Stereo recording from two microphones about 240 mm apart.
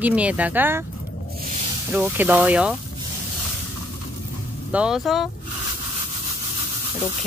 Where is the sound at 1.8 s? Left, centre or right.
Centre.